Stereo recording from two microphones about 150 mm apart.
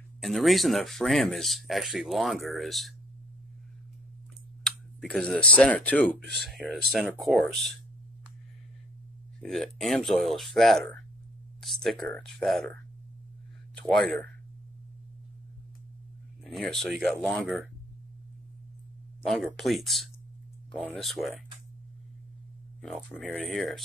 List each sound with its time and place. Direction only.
0.2 s speech: centre (ahead or behind)
4.6 s speech: 5° left (ahead or behind)
6.2 s speech: 90° right
6.7 s speech: centre (ahead or behind)
9.4 s speech: 5° left (ahead or behind)
13.7 s speech: 5° left (ahead or behind)
16.5 s speech: centre (ahead or behind)
19.2 s speech: centre (ahead or behind)
22.8 s speech: 5° left (ahead or behind)